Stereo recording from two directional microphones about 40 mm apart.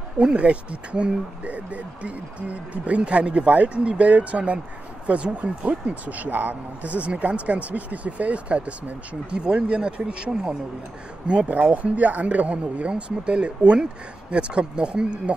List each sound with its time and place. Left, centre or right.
0.2 s speech: right
11.4 s speech: right